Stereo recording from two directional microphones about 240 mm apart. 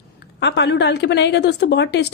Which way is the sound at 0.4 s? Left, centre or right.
Left.